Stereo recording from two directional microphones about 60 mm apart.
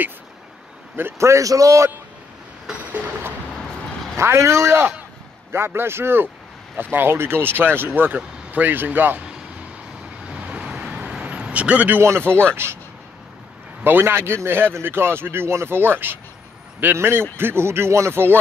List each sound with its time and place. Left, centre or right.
1.1 s a man's voice: right
2.7 s a sound: right
4.2 s speech: right
10.2 s vehicle: centre
12.6 s speech: right
13.8 s speech: right